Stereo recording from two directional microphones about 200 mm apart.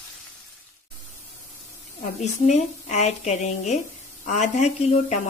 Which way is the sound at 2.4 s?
35° left (ahead or behind).